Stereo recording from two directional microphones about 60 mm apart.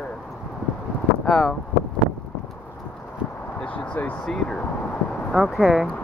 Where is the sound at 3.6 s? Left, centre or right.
Left.